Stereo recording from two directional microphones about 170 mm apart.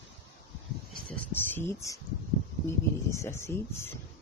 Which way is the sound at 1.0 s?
10° left (ahead or behind).